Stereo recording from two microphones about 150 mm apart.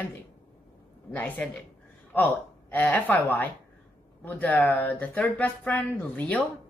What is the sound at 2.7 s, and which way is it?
Speech, 10° left (ahead or behind).